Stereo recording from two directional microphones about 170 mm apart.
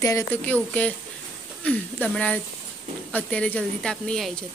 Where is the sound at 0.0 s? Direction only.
15° left (ahead or behind).